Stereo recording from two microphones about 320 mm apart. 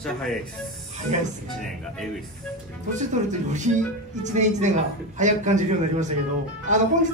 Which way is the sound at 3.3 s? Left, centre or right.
Right.